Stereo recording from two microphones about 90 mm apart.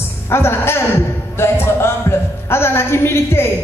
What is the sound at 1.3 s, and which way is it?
Music, 30° left (ahead or behind).